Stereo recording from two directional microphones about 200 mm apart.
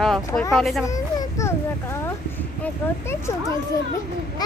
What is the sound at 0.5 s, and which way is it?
Speech, centre (ahead or behind).